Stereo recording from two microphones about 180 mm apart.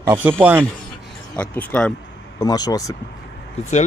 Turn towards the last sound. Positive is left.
turn(degrees=35)  # may be behind; listen again after turning